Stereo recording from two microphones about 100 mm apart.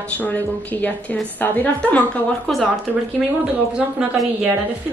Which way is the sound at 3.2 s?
10° right (ahead or behind).